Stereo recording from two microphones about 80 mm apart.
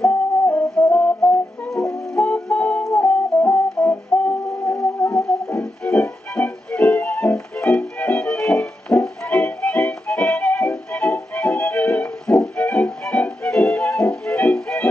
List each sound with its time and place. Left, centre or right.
0.0 s music: left
1.7 s music: centre
5.1 s music: centre